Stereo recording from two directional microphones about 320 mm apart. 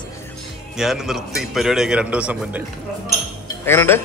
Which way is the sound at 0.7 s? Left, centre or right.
Centre.